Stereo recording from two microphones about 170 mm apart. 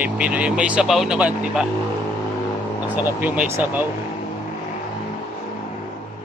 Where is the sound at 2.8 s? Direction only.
10° right (ahead or behind).